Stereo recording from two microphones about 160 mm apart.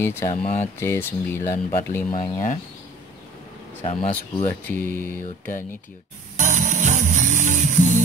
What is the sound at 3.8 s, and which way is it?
Speech, 40° left (ahead or behind).